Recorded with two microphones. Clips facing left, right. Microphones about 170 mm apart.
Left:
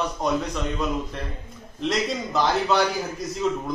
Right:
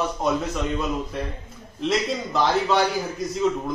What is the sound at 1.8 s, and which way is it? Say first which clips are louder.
A man's voice: right 1 dB; centre (ahead or behind).